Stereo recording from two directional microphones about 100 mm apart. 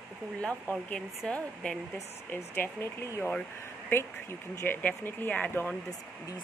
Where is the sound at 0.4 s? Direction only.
10° left (ahead or behind).